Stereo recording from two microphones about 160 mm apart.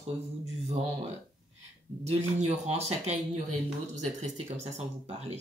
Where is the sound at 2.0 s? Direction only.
45° right (ahead or behind).